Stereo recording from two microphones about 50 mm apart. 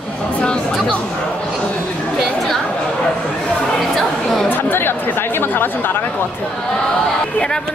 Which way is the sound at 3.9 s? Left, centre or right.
Centre.